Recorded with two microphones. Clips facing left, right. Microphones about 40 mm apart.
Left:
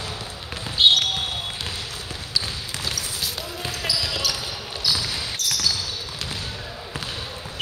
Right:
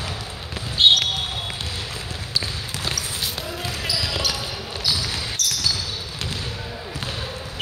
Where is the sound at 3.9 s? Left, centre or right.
Centre.